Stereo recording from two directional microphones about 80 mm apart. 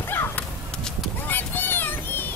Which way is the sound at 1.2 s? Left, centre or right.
Left.